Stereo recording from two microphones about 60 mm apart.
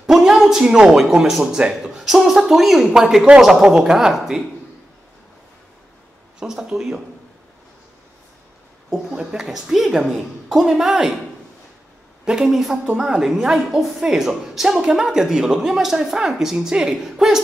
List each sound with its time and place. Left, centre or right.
0.0 s a sound: centre
0.9 s a woman's voice: centre
6.6 s a woman's voice: centre
8.9 s a woman's voice: centre
12.3 s a woman's voice: centre
12.7 s a woman's voice: centre
13.0 s a woman's voice: centre